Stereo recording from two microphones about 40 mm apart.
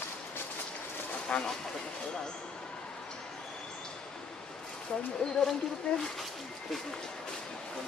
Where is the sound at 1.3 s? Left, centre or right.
Left.